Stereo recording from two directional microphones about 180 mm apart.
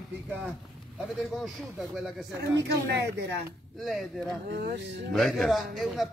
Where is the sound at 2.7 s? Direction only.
70° right (ahead or behind).